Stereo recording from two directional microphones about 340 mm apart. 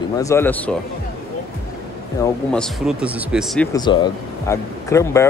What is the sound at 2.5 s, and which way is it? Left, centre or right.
Speech, centre.